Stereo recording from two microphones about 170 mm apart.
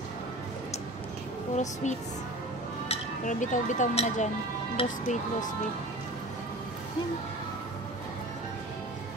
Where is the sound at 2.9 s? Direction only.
50° left (ahead or behind).